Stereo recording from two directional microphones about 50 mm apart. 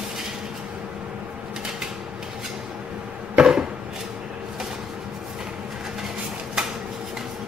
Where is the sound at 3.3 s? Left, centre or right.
Centre.